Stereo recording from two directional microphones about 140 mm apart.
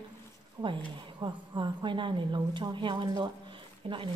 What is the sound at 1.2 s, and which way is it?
A woman's voice, 35° right (ahead or behind).